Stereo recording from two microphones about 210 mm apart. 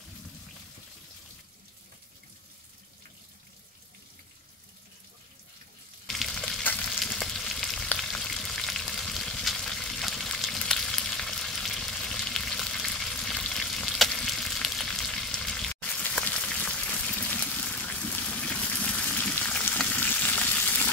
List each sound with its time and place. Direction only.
6.0 s frying: centre (ahead or behind)
17.2 s water: 5° left (ahead or behind)